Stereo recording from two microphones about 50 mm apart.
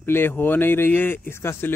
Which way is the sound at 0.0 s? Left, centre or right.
Left.